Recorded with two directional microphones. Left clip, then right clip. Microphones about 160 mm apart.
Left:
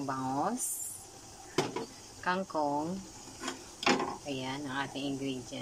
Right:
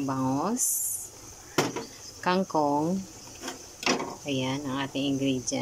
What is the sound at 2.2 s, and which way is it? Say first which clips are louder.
Speech: right 6 dB; 20° right (ahead or behind).